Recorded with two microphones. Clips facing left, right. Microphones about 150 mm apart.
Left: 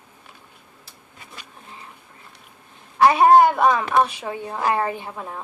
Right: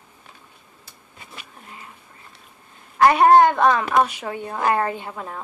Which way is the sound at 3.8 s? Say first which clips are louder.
Even; 15° right (ahead or behind).